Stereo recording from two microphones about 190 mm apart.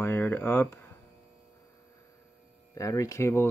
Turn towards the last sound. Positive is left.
turn(degrees=15)  # may be behind; listen again after turning